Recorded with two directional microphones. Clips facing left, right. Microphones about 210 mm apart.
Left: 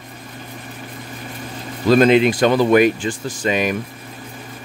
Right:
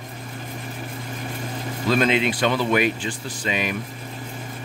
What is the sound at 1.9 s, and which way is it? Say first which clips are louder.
Speech: left 8 dB; 40° left (ahead or behind).